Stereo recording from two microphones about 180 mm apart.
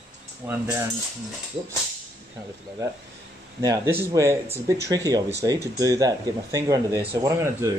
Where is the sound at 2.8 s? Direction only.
15° right (ahead or behind).